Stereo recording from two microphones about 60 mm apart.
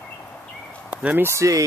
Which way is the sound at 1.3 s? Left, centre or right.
Right.